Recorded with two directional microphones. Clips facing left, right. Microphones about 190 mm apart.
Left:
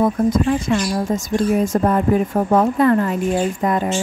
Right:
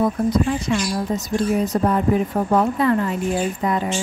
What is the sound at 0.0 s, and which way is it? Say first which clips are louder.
Speech: left 2 dB; 50° left (ahead or behind).